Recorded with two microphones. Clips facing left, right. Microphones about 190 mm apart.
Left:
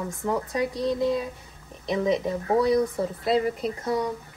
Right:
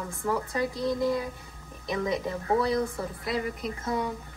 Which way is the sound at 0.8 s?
25° left (ahead or behind).